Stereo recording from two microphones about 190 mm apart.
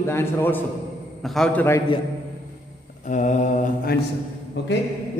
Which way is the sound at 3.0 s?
40° left (ahead or behind).